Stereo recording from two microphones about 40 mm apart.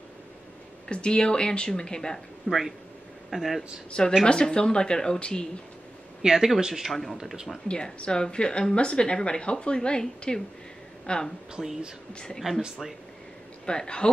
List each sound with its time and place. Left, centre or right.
0.8 s speech: left
2.5 s speech: left
3.3 s speech: centre
4.2 s speech: centre
6.2 s speech: centre
6.9 s speech: centre
7.6 s speech: left
11.5 s speech: centre
12.1 s speech: left
12.4 s speech: centre
13.7 s speech: left